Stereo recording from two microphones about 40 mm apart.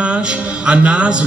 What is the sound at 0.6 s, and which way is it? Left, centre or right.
Music, right.